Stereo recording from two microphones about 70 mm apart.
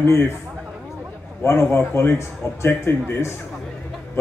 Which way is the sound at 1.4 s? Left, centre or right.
Left.